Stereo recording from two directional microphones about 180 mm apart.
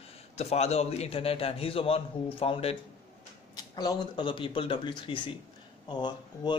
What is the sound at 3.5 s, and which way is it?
A man's voice, 20° left (ahead or behind).